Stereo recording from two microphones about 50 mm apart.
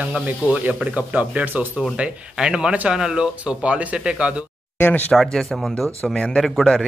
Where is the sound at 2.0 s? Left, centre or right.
Centre.